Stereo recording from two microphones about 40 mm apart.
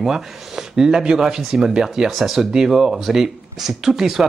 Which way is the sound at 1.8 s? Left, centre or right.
Centre.